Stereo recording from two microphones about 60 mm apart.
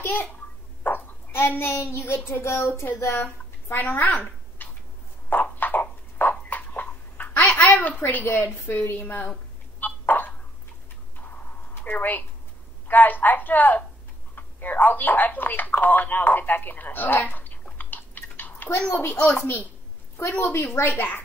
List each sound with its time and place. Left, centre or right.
0.0 s a child's voice: left
5.3 s a sound: left
6.5 s babbling: left
7.6 s a sound: left
8.1 s speech: left
9.8 s a sound: left
12.8 s speech: left
17.7 s chewing: left
18.9 s speech: left
19.1 s speech: centre
20.2 s a woman's voice: left
20.9 s a woman's voice: left